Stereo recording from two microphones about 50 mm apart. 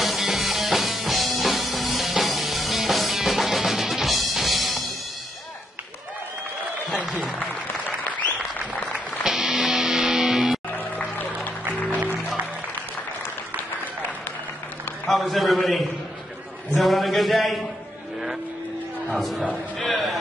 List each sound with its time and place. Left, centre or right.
0.0 s music: centre
8.9 s music: centre
10.8 s music: left
15.0 s a man's voice: centre
16.7 s a sound: centre
19.1 s music: centre
19.5 s a sound: centre